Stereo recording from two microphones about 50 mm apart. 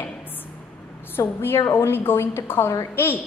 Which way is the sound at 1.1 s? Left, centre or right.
Left.